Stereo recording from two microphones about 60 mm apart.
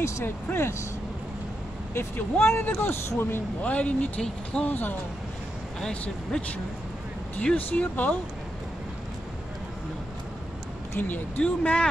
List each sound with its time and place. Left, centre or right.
0.0 s speech: left
2.0 s speech: left
3.6 s speech: left
4.6 s speech: left
7.3 s speech: left
11.0 s speech: left